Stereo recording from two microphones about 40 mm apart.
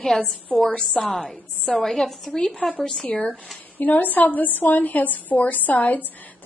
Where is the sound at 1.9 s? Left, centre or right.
Centre.